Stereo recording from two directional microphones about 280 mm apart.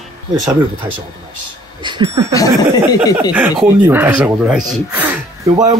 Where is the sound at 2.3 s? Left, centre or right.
Centre.